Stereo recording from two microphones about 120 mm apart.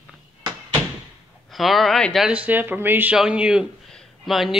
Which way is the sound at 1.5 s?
Centre (ahead or behind).